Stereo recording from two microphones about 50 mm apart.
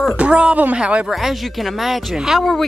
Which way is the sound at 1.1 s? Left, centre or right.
Centre.